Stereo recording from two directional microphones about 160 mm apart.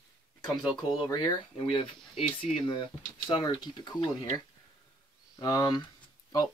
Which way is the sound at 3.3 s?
30° left (ahead or behind).